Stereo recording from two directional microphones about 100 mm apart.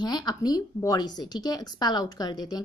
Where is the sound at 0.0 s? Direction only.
45° left (ahead or behind).